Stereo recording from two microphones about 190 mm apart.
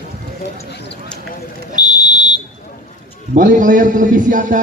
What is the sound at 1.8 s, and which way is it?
Buzzer, 20° left (ahead or behind).